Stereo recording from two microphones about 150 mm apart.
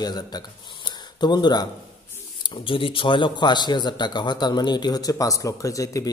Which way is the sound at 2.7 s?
35° left (ahead or behind).